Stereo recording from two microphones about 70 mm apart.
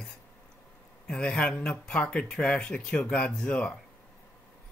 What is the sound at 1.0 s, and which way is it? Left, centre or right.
Speech, centre.